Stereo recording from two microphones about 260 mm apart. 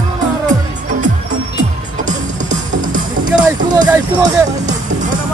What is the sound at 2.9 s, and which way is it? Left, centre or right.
Music, right.